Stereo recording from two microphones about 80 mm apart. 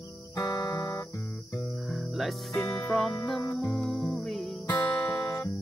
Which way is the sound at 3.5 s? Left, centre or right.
Centre.